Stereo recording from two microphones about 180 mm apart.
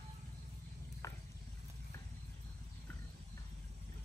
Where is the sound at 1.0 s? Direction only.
15° left (ahead or behind).